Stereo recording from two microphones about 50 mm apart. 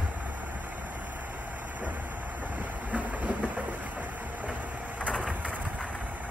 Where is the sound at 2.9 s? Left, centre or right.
Right.